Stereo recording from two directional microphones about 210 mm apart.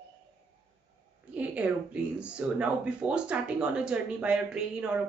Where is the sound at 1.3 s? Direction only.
5° right (ahead or behind).